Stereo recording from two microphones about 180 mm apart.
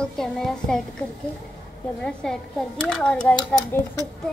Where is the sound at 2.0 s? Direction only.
5° left (ahead or behind).